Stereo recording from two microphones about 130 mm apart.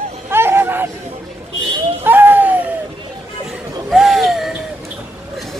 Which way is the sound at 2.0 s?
15° right (ahead or behind).